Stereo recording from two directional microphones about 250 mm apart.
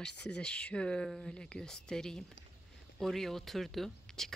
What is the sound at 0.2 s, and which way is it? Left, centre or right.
Speech, centre.